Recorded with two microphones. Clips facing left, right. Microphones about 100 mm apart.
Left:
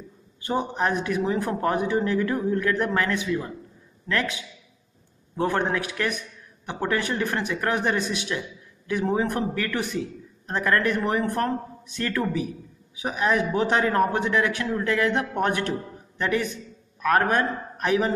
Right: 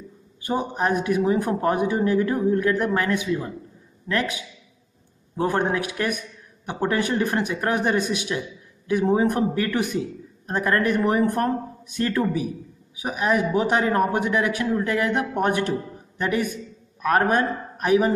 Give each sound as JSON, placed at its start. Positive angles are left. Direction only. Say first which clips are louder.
{"t": 0.4, "sound": "a man's voice", "louder": "right 1 dB", "side_deg": -10}
{"t": 5.4, "sound": "a man's voice", "louder": "right 2 dB", "side_deg": -15}